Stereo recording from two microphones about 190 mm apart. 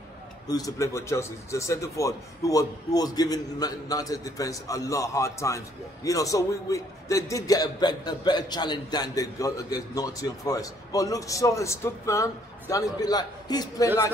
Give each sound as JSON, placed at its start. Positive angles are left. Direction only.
{"t": 0.5, "sound": "a man's voice", "side_deg": 20}